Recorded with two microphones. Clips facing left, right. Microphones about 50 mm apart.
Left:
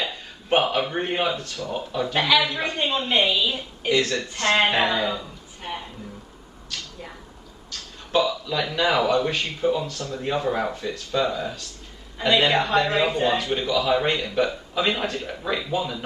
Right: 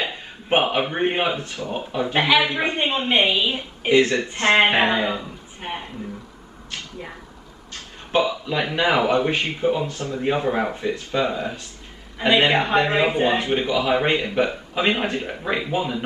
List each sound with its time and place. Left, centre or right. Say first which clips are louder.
0.0 s speech: right 2 dB; right
6.7 s a sound: right 2 dB; right
7.7 s speech: right 1 dB; right